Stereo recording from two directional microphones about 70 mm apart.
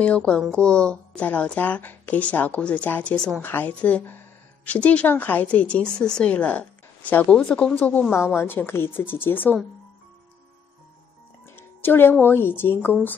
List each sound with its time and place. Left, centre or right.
0.0 s speech: centre
3.4 s speech: left
7.7 s speech: left
8.1 s speech: left
11.4 s speech: left